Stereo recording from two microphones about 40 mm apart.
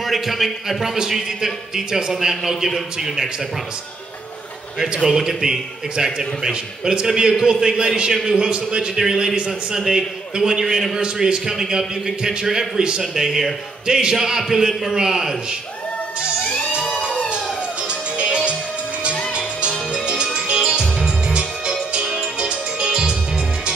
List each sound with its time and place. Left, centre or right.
0.0 s a man's voice: centre
4.7 s a man's voice: centre
11.0 s a man's voice: centre
13.0 s a man's voice: centre
18.1 s music: right
19.9 s music: right